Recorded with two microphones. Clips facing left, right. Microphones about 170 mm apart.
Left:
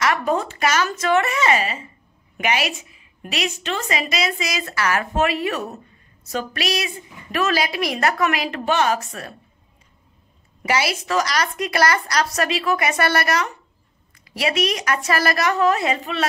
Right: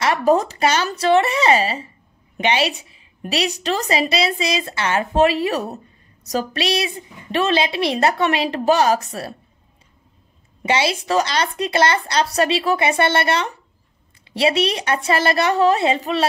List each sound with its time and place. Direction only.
0.0 s a woman's voice: 35° right (ahead or behind)
10.6 s a woman's voice: 25° right (ahead or behind)